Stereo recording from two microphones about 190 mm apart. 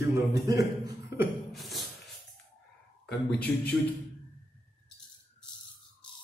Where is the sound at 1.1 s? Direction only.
15° right (ahead or behind).